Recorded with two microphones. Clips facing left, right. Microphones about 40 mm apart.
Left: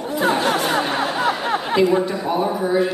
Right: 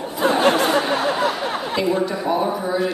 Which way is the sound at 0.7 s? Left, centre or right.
Left.